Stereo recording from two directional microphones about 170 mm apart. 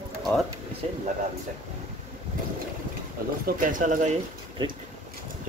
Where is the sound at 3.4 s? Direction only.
50° right (ahead or behind).